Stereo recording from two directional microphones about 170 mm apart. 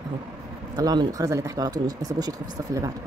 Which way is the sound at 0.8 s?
20° right (ahead or behind).